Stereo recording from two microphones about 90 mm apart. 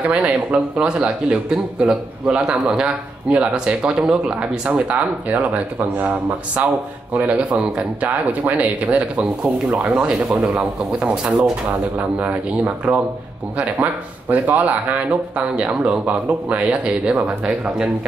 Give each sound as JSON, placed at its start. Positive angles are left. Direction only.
{"t": 0.0, "sound": "speech", "side_deg": -10}
{"t": 14.3, "sound": "speech", "side_deg": -15}